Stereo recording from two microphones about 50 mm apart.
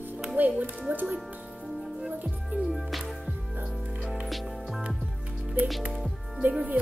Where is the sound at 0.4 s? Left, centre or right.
Right.